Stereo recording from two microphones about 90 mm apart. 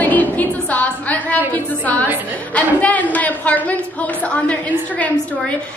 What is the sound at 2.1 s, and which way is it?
Speech, 20° right (ahead or behind).